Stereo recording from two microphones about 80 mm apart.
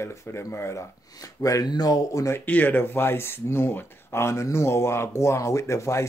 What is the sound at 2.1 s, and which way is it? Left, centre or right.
Speech, left.